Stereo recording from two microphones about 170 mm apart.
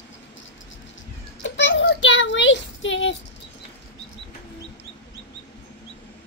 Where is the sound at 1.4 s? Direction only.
90° left.